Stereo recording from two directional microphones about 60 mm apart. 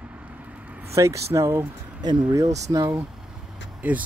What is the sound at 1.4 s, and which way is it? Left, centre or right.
Speech, right.